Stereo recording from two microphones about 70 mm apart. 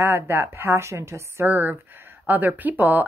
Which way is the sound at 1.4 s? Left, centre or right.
Right.